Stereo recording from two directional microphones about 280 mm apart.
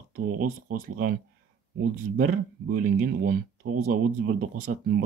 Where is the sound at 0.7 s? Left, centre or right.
Right.